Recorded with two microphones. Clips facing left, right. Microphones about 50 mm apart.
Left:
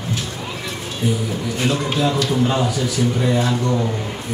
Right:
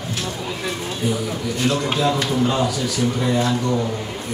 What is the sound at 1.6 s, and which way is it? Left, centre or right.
Speech, centre.